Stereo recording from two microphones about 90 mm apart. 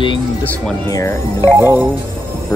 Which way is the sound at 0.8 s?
40° left (ahead or behind).